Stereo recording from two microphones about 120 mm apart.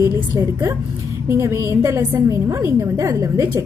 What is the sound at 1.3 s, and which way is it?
A woman's voice, 25° right (ahead or behind).